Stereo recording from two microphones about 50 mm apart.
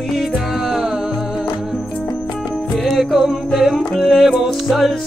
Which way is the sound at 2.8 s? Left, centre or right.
Centre.